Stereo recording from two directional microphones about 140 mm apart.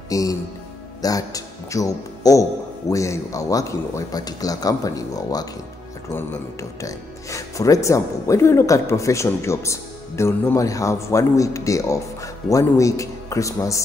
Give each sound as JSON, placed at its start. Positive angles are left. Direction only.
{"t": 0.1, "sound": "speech", "side_deg": 25}
{"t": 6.8, "sound": "speech", "side_deg": 25}